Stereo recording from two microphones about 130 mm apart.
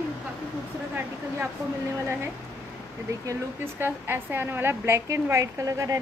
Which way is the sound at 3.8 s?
15° right (ahead or behind).